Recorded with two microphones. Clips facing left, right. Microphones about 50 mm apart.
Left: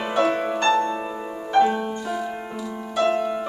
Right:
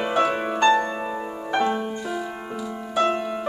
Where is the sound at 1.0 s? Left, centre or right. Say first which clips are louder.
Right 1 dB; centre.